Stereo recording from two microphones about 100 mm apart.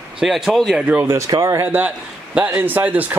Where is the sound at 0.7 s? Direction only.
15° right (ahead or behind).